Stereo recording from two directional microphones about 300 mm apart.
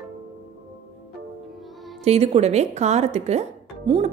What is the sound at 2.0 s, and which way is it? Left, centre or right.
A woman's voice, right.